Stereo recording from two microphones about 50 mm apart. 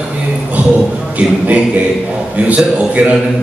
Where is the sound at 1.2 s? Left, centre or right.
Right.